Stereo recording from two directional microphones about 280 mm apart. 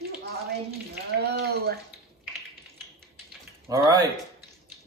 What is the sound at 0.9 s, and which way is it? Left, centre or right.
Speech, right.